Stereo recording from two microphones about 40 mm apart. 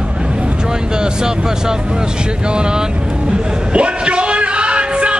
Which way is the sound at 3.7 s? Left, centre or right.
Right.